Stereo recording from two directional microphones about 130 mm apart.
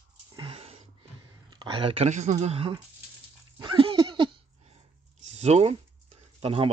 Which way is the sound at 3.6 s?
40° right (ahead or behind).